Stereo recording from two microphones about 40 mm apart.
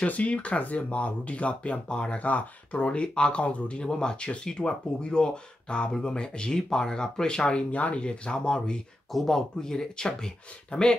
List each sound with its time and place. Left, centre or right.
0.0 s speech: left
2.1 s speech: left
7.7 s speech: left
9.1 s speech: centre